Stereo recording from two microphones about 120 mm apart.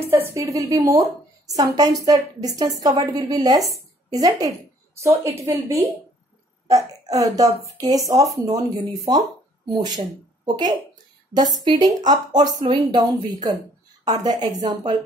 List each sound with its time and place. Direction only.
0.0 s a woman's voice: 20° right (ahead or behind); by 15.0 s 35° right (ahead or behind)